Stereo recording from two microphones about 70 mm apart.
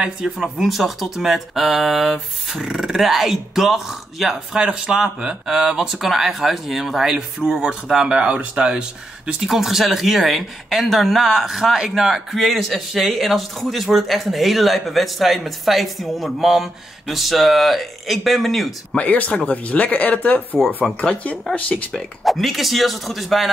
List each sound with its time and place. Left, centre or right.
0.4 s speech: centre
18.9 s speech: left
21.9 s speech: centre